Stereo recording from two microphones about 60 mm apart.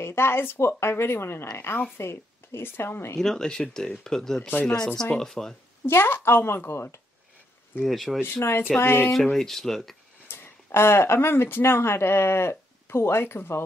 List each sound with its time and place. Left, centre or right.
0.0 s a woman's voice: left
3.2 s speech: centre
5.9 s speech: left
7.8 s speech: centre
8.2 s a woman's voice: left
9.1 s speech: centre
10.2 s speech: left